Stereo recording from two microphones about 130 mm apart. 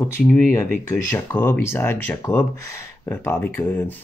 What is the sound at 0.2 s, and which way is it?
Speech, 10° left (ahead or behind).